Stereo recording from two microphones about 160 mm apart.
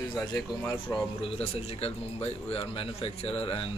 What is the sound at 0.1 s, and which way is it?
Speech, 20° left (ahead or behind).